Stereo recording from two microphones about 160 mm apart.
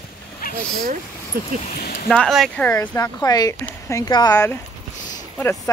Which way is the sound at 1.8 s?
75° left (ahead or behind).